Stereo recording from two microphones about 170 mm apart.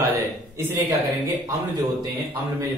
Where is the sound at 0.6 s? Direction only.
20° right (ahead or behind).